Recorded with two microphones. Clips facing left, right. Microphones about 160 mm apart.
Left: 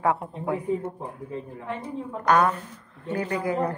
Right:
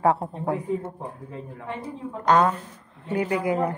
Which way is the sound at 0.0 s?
35° right (ahead or behind).